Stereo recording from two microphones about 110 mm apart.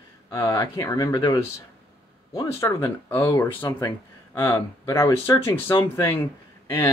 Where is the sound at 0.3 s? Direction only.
30° left (ahead or behind).